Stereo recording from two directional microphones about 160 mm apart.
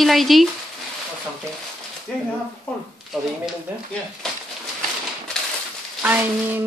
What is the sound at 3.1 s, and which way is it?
Speech, centre (ahead or behind).